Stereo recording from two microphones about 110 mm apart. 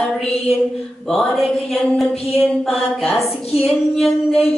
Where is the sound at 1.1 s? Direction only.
Centre (ahead or behind).